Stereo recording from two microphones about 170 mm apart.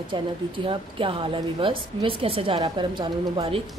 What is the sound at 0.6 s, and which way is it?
A woman's voice, 30° right (ahead or behind).